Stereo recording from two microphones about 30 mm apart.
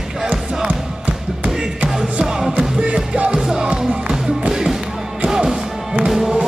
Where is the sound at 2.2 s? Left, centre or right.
Centre.